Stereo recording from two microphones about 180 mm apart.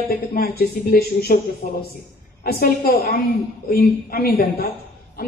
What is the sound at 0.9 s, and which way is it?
A woman's voice, 60° left (ahead or behind).